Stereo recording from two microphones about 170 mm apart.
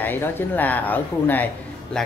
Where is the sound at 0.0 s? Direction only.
10° left (ahead or behind).